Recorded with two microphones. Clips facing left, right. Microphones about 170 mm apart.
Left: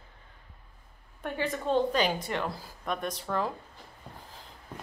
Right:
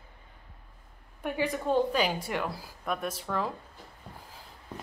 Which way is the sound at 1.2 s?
10° right (ahead or behind).